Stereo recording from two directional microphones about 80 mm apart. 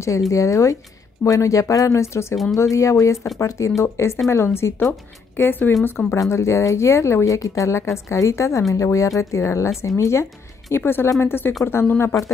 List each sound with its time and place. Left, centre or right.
0.3 s speech: left